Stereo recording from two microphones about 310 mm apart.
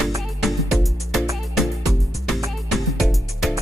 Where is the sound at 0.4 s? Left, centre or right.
Centre.